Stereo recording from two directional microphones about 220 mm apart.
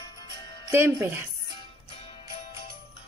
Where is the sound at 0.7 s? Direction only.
10° right (ahead or behind).